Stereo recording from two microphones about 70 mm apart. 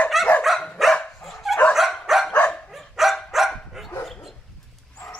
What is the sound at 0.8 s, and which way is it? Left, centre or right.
Dog, centre.